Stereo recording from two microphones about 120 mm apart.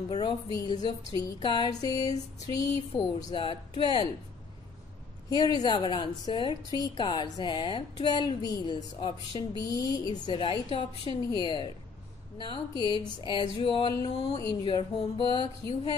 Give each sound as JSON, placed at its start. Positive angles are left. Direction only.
{"t": 0.1, "sound": "music", "side_deg": 35}
{"t": 3.3, "sound": "speech", "side_deg": 45}
{"t": 5.3, "sound": "music", "side_deg": 35}